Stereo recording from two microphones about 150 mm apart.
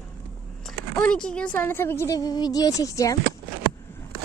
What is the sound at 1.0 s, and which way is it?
A woman's voice, 5° left (ahead or behind).